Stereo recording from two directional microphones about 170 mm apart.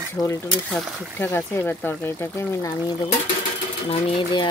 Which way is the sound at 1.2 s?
10° left (ahead or behind).